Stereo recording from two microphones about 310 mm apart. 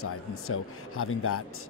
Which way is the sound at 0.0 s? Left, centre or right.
Left.